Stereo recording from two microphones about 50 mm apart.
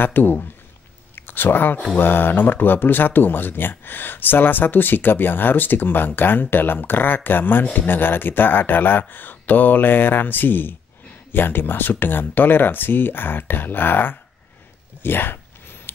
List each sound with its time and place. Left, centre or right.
0.0 s speech: left
1.1 s a sound: left
2.0 s speech: left